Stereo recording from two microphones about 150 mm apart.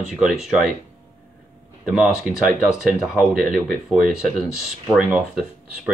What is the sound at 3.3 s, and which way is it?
Speech, 65° right (ahead or behind).